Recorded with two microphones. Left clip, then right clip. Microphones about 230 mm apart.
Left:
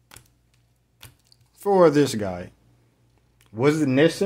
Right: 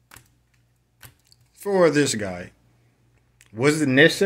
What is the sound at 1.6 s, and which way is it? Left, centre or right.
Speech, centre.